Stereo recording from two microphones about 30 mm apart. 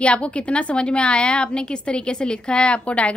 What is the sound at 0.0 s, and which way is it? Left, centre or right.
A woman's voice, left.